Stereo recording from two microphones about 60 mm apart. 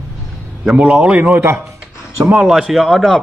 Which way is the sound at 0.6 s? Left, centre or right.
Centre.